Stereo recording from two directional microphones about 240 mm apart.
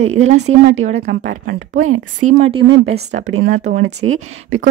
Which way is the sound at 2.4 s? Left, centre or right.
Right.